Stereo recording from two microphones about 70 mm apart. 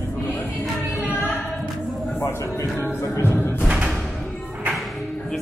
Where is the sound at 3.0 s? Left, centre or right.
Left.